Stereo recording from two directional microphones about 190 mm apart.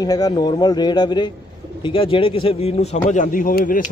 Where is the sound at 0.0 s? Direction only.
20° left (ahead or behind).